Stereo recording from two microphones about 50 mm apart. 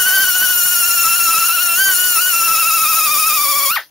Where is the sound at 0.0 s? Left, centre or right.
Centre.